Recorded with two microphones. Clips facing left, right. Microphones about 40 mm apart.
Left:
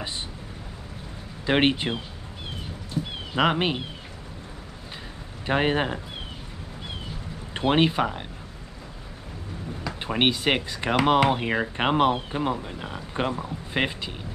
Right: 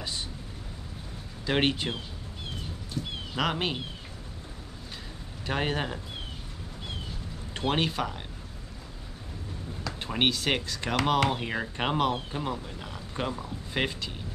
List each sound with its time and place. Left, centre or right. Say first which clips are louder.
1.4 s speech: left 5 dB; left
3.0 s a sound: left 5 dB; centre
3.3 s speech: left 6 dB; left
5.5 s speech: left 6 dB; left
7.5 s speech: left 7 dB; left
9.8 s speech: left 4 dB; left